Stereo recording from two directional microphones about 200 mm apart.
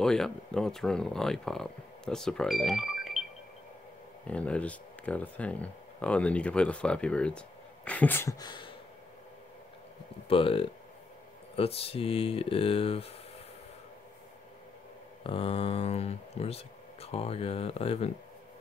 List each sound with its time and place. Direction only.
0.0 s speech: 5° left (ahead or behind)
4.3 s speech: 5° left (ahead or behind); by 8.7 s 20° left (ahead or behind)
10.2 s speech: 25° left (ahead or behind)
15.2 s speech: 25° left (ahead or behind)